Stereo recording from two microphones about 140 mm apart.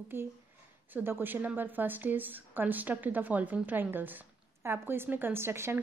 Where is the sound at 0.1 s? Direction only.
15° right (ahead or behind).